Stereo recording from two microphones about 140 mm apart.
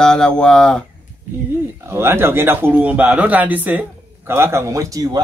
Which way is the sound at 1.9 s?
15° right (ahead or behind).